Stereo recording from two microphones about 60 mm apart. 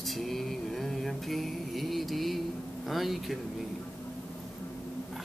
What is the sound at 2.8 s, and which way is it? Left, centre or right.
Speech, centre.